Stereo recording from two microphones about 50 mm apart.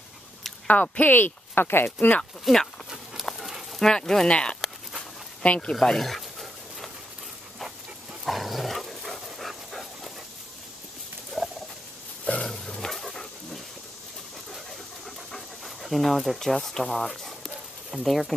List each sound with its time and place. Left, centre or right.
0.7 s speech: left
2.0 s speech: left
2.5 s speech: centre
3.3 s a sound: centre
3.8 s speech: centre
4.3 s speech: left
5.8 s a sound: centre
8.3 s dog: centre
11.4 s fowl: centre
12.4 s dog: centre
15.0 s pant: centre
17.9 s speech: centre